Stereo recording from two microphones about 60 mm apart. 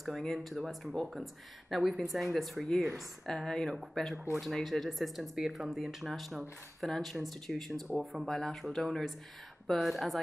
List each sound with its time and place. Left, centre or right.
0.0 s speech: centre
8.3 s speech: centre